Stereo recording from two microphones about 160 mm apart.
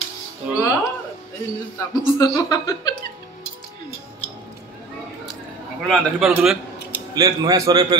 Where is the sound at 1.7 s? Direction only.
20° left (ahead or behind).